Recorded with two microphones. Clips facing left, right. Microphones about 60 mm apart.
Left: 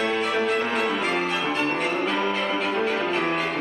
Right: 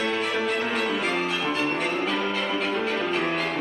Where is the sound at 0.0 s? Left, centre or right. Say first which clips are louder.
Left 2 dB; centre.